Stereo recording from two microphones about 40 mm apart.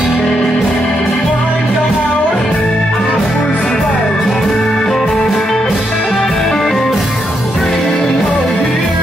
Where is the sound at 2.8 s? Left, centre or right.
Centre.